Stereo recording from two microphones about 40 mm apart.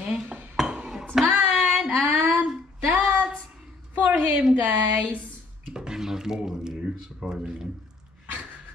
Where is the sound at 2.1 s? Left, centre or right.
Right.